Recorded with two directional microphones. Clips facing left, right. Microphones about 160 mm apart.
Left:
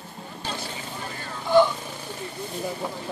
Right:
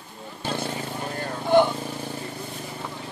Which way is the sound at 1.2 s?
55° right (ahead or behind).